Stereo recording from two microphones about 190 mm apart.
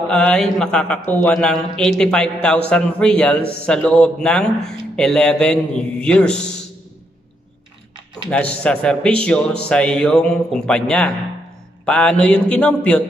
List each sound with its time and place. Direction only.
0.1 s speech: 5° left (ahead or behind)
8.3 s speech: 5° left (ahead or behind)